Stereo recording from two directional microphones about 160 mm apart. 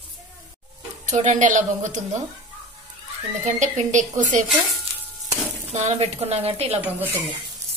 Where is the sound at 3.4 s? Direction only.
50° right (ahead or behind).